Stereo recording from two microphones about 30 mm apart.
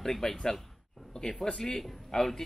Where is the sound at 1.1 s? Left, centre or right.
Left.